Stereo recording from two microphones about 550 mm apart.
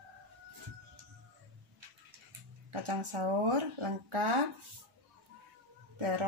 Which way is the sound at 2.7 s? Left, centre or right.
Right.